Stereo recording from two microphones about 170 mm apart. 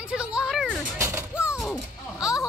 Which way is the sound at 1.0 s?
15° right (ahead or behind).